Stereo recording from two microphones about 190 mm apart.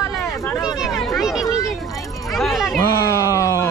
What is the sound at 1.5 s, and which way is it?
Speech, 20° left (ahead or behind).